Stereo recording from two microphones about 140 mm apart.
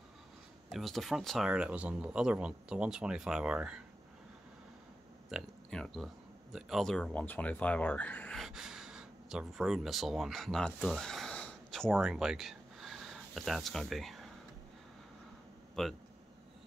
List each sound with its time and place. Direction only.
0.7 s speech: centre (ahead or behind)
5.3 s speech: 5° right (ahead or behind)
8.4 s speech: 5° right (ahead or behind)
15.7 s speech: centre (ahead or behind)